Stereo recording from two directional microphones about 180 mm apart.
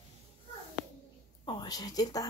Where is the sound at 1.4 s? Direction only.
25° left (ahead or behind).